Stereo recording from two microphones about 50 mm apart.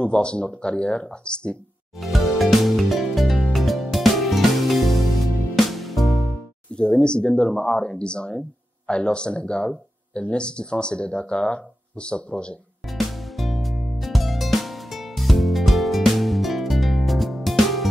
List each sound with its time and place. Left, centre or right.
0.0 s speech: left
2.0 s music: centre
6.7 s speech: centre
12.9 s music: centre